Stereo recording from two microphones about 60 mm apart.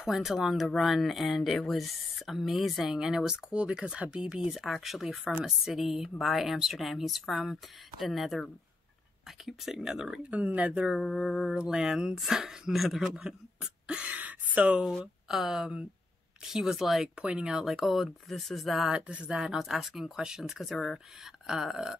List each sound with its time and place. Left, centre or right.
0.0 s speech: centre
4.6 s speech: centre
9.5 s speech: centre
10.0 s speech: right
10.9 s speech: centre
14.0 s a sound: right
15.2 s speech: centre
17.2 s speech: centre
17.6 s speech: centre
18.9 s speech: centre
19.5 s speech: centre